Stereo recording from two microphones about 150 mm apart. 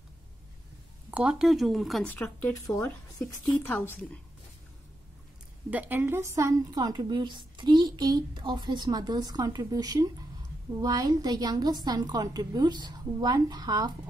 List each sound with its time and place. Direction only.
1.1 s speech: 5° right (ahead or behind)
2.2 s speech: 20° left (ahead or behind)
3.4 s speech: 10° left (ahead or behind)
5.7 s a woman's voice: 10° right (ahead or behind)